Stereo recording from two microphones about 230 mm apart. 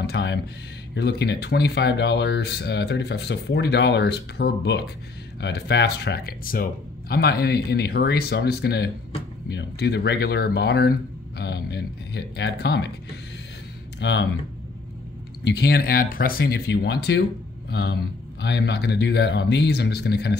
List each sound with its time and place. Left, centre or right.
0.0 s a sound: left
0.9 s speech: left
15.4 s speech: left